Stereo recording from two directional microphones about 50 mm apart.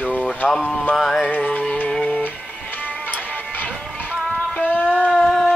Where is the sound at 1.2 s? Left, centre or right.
Left.